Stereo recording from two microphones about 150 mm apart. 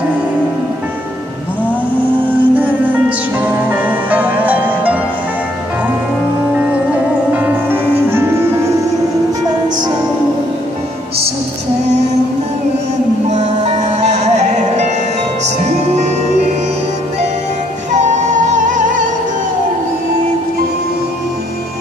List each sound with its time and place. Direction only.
2.5 s music: 10° right (ahead or behind)
6.7 s music: 10° right (ahead or behind)
13.3 s music: 50° right (ahead or behind)
17.9 s music: 55° right (ahead or behind)